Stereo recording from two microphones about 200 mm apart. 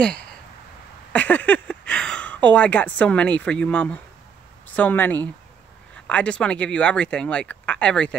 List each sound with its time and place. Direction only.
0.0 s speech: 5° left (ahead or behind)